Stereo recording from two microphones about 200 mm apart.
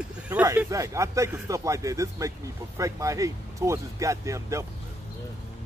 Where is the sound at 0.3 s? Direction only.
10° right (ahead or behind).